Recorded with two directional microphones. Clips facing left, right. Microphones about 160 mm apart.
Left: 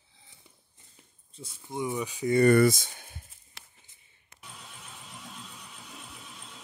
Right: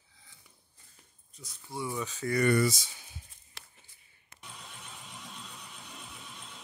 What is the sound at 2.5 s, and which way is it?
Speech, 55° left (ahead or behind).